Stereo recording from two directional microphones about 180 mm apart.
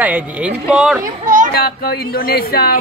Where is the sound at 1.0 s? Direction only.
45° right (ahead or behind).